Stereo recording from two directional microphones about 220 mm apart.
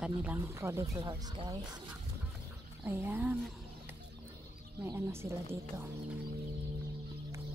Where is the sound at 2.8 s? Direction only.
10° right (ahead or behind).